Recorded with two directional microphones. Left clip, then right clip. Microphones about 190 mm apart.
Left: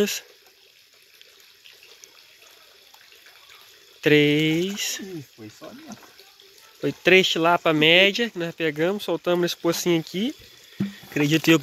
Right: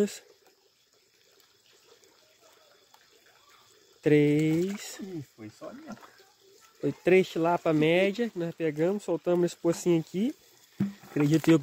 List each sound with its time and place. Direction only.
4.0 s speech: centre (ahead or behind)